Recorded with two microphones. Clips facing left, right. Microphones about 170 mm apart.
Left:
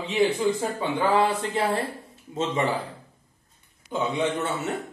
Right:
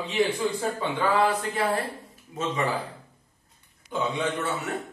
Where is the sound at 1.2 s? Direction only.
25° left (ahead or behind).